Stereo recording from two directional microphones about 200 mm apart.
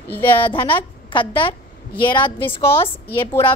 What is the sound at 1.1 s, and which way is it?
A woman's voice, 25° left (ahead or behind).